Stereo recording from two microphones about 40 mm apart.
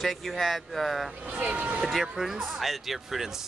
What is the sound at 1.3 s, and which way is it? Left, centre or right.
Speech, right.